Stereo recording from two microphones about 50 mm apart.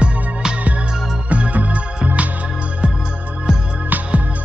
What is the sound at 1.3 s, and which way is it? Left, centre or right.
Music, right.